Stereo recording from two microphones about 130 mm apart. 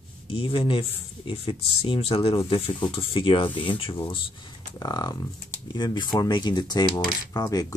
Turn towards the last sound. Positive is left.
turn(degrees=30)  # may be behind; listen again after turning